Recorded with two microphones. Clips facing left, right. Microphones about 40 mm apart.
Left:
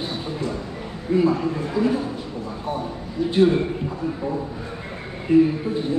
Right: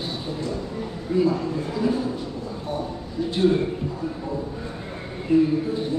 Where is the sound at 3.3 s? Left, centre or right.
Left.